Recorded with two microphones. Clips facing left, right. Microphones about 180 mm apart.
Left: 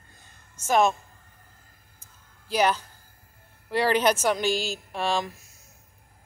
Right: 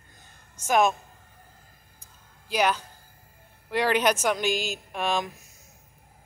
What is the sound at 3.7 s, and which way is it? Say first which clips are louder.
Speech: left 1 dB; 10° right (ahead or behind).